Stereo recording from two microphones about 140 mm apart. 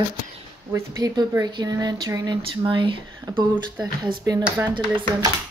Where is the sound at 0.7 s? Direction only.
25° right (ahead or behind).